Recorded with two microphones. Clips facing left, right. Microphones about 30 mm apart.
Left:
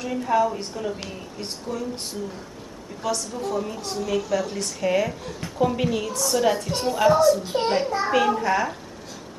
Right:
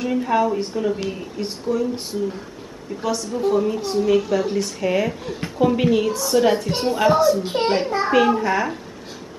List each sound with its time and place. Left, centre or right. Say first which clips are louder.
0.0 s a woman's voice: right 2 dB; centre
3.3 s a woman's voice: right 8 dB; right
7.3 s a child's voice: right 3 dB; right
8.1 s a woman's voice: right 4 dB; centre